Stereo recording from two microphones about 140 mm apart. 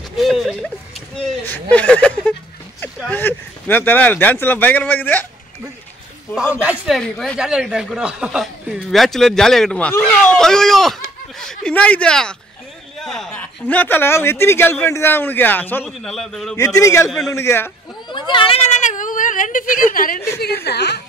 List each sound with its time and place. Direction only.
0.2 s a sound: centre (ahead or behind)
1.4 s speech: 10° left (ahead or behind)
6.6 s speech: 10° right (ahead or behind)
7.0 s a man's voice: 5° left (ahead or behind)
15.8 s speech: centre (ahead or behind)
16.5 s a man's voice: 20° left (ahead or behind)
18.1 s a sound: 35° left (ahead or behind)
18.8 s whimper: 65° left (ahead or behind); by 20.2 s 85° left
20.2 s a man's voice: 15° left (ahead or behind)